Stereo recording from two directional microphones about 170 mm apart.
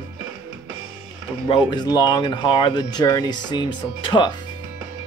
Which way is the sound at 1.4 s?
25° left (ahead or behind).